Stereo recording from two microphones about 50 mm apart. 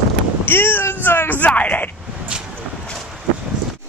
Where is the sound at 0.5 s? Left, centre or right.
Left.